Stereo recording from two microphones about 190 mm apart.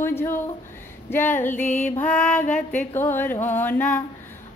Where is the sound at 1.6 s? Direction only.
40° left (ahead or behind).